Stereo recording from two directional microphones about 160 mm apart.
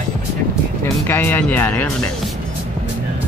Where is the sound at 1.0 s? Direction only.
15° left (ahead or behind).